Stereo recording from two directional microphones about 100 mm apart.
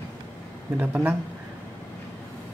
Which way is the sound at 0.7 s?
20° right (ahead or behind).